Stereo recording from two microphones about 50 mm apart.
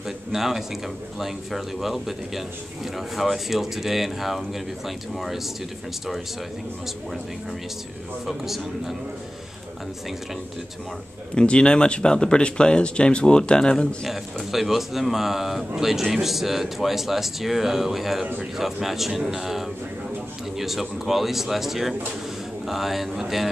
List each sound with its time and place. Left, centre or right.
0.0 s a man's voice: centre
8.3 s a man's voice: centre
11.3 s speech: centre
14.0 s a man's voice: centre